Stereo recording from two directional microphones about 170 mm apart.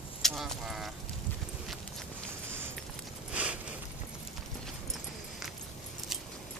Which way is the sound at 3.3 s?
10° right (ahead or behind).